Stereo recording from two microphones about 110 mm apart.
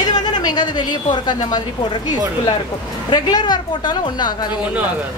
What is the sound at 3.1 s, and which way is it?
A woman's voice, 40° left (ahead or behind).